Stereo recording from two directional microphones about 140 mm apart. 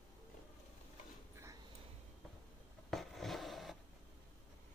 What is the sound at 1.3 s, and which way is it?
Dog, 20° right (ahead or behind).